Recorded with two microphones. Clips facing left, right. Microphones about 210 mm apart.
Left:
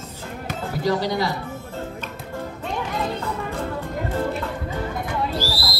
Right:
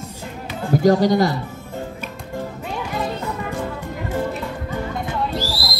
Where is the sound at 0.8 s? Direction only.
45° right (ahead or behind).